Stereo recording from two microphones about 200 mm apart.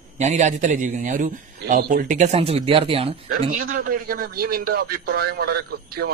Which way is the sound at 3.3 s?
45° right (ahead or behind).